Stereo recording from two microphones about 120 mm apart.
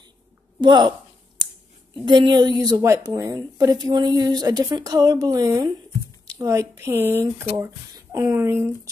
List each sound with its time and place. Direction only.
0.6 s speech: 40° right (ahead or behind)
2.0 s speech: 40° right (ahead or behind); by 8.7 s 20° right (ahead or behind)